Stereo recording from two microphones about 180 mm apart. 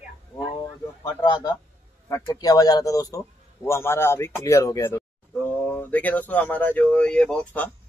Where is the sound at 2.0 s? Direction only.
20° left (ahead or behind).